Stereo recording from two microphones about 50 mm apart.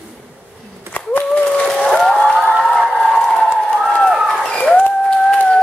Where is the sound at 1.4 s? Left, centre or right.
Centre.